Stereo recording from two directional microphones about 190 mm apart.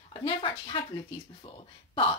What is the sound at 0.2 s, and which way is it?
Speech, 25° left (ahead or behind).